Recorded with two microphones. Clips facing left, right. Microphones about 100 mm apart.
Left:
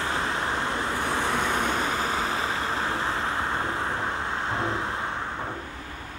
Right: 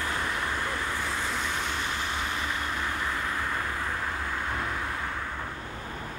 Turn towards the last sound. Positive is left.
turn(degrees=25)  # may be behind; listen again after turning